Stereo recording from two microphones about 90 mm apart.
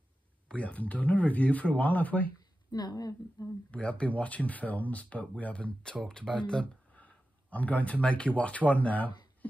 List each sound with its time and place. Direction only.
0.5 s speech: 15° left (ahead or behind)
2.7 s a woman's voice: 45° left (ahead or behind)
3.7 s speech: 15° left (ahead or behind)